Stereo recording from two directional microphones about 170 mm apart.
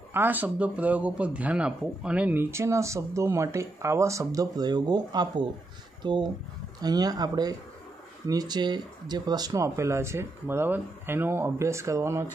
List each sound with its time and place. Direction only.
0.1 s speech: 10° right (ahead or behind)